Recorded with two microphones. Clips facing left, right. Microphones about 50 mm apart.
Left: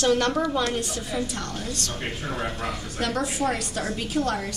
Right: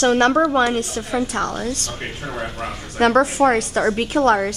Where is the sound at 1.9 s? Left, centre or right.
Centre.